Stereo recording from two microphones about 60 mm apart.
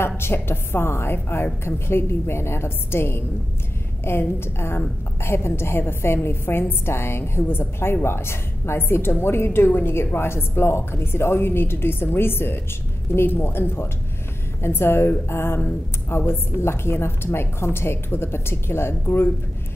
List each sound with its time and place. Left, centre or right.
0.0 s a woman's voice: left